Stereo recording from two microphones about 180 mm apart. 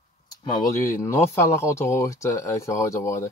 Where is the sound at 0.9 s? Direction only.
15° left (ahead or behind).